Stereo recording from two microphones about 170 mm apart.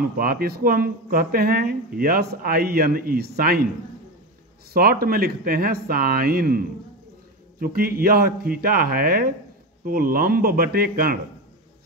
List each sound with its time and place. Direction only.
0.2 s speech: 60° right (ahead or behind)
5.0 s speech: 60° right (ahead or behind)
7.6 s speech: 60° right (ahead or behind)